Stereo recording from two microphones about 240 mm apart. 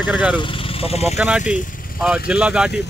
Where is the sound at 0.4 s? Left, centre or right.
Left.